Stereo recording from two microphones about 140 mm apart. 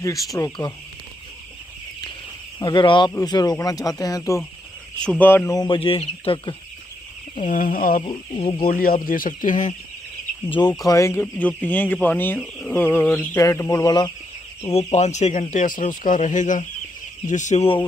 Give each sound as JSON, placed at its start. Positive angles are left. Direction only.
{"t": 0.0, "sound": "speech", "side_deg": 25}
{"t": 2.6, "sound": "speech", "side_deg": 35}
{"t": 5.2, "sound": "speech", "side_deg": 15}
{"t": 5.6, "sound": "speech", "side_deg": 40}
{"t": 7.3, "sound": "speech", "side_deg": 70}
{"t": 8.0, "sound": "speech", "side_deg": 40}
{"t": 8.6, "sound": "speech", "side_deg": 90}
{"t": 10.8, "sound": "speech", "side_deg": 20}
{"t": 14.7, "sound": "speech", "side_deg": 50}
{"t": 15.5, "sound": "speech", "side_deg": 65}